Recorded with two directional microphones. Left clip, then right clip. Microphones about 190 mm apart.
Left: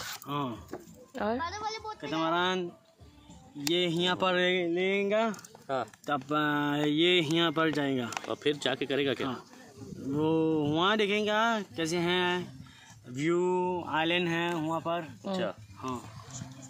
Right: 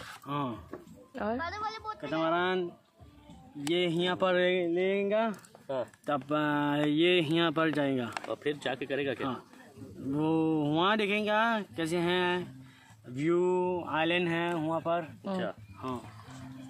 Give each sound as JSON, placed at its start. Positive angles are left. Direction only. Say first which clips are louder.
{"t": 0.3, "sound": "speech", "louder": "even", "side_deg": 0}
{"t": 1.1, "sound": "a woman's voice", "louder": "left 2 dB", "side_deg": 15}
{"t": 1.4, "sound": "a woman's voice", "louder": "left 1 dB", "side_deg": -30}
{"t": 2.0, "sound": "speech", "louder": "right 1 dB", "side_deg": -5}
{"t": 2.3, "sound": "speech", "louder": "left 2 dB", "side_deg": 15}
{"t": 3.6, "sound": "speech", "louder": "left 1 dB", "side_deg": 0}
{"t": 8.3, "sound": "speech", "louder": "left 5 dB", "side_deg": 65}
{"t": 10.1, "sound": "speech", "louder": "left 1 dB", "side_deg": -5}